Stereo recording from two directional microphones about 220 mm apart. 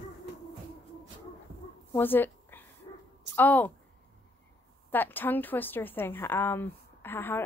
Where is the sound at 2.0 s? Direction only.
10° left (ahead or behind).